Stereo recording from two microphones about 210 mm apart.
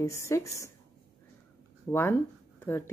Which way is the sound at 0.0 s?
15° left (ahead or behind).